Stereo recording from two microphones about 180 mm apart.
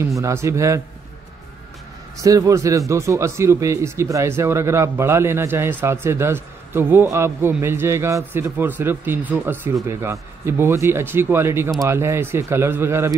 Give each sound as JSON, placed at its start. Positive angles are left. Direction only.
{"t": 0.0, "sound": "speech", "side_deg": -15}
{"t": 2.2, "sound": "speech", "side_deg": -20}